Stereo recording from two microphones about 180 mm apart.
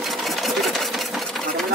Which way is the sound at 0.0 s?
Centre (ahead or behind).